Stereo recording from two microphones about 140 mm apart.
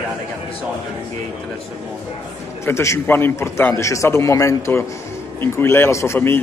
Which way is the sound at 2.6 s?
20° left (ahead or behind).